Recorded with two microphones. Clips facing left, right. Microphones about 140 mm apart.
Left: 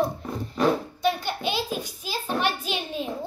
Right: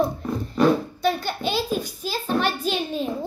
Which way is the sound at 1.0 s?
15° left (ahead or behind).